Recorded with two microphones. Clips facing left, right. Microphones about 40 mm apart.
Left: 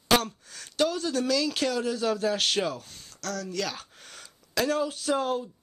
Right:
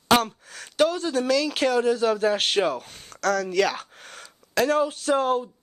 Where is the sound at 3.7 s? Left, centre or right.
Right.